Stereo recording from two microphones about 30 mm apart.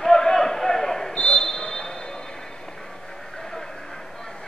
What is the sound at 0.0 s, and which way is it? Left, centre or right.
Basketball bounce, centre.